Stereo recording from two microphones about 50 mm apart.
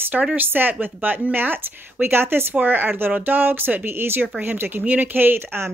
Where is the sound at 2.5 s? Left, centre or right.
Right.